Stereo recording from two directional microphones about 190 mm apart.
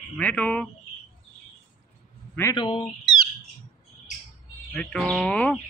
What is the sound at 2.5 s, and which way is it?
Speech, 25° left (ahead or behind).